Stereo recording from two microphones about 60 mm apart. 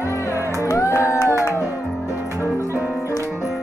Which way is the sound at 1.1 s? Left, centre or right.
Left.